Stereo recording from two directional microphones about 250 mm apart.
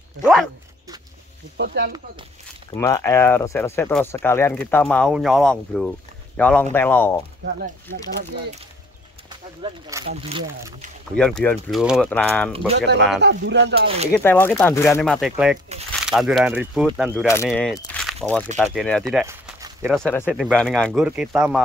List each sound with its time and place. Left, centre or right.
0.2 s speech: centre
1.6 s speech: right
2.7 s speech: centre
9.3 s speech: centre
11.1 s speech: centre
13.2 s speech: right
13.7 s speech: right
14.1 s speech: centre
18.0 s crunch: centre
18.6 s speech: centre
19.2 s a sound: centre
20.0 s speech: centre